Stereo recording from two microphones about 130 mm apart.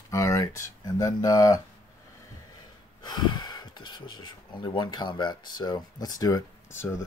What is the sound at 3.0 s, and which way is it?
Speech, 35° left (ahead or behind).